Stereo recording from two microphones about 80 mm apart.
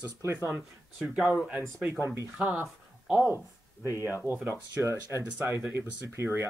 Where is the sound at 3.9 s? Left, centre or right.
Left.